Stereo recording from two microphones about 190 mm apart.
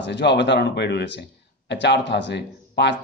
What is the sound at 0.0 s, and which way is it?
A man's voice, 65° left (ahead or behind).